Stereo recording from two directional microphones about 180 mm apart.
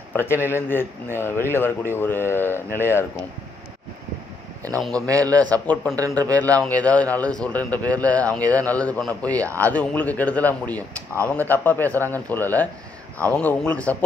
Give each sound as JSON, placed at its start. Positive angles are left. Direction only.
{"t": 0.1, "sound": "speech", "side_deg": 10}
{"t": 4.6, "sound": "a man's voice", "side_deg": 5}
{"t": 5.9, "sound": "speech", "side_deg": -20}
{"t": 6.6, "sound": "speech", "side_deg": 5}